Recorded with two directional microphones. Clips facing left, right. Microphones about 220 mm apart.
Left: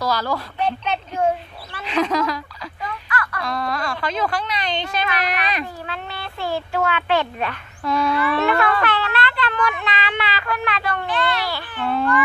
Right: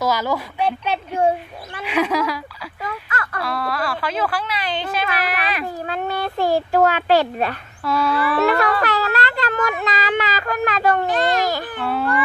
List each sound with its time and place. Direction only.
0.0 s a woman's voice: 20° right (ahead or behind)
3.1 s a sound: 25° right (ahead or behind)
3.4 s speech: 5° right (ahead or behind)
5.9 s speech: 45° right (ahead or behind)
11.8 s a woman's voice: 5° right (ahead or behind)